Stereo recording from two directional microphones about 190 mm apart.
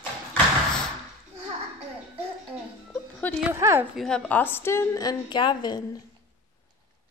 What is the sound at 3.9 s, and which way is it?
A woman's voice, 5° left (ahead or behind).